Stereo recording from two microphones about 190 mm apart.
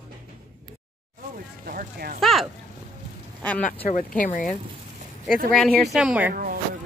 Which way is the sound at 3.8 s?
45° left (ahead or behind).